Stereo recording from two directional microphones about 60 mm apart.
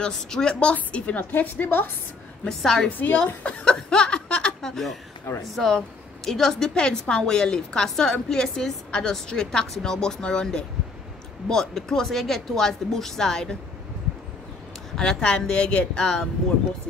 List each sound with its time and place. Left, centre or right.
0.0 s a woman's voice: centre; by 1.9 s left
2.4 s a woman's voice: centre
15.0 s a woman's voice: centre